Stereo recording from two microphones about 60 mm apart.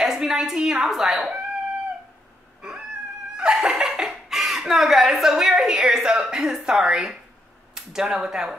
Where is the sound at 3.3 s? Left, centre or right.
Centre.